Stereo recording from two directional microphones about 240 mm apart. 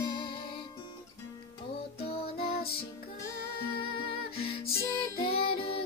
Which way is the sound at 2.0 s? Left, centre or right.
Left.